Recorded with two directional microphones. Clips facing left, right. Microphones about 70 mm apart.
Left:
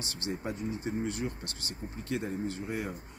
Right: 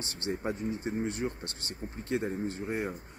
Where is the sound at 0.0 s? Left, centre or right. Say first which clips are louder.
Right 2 dB; right.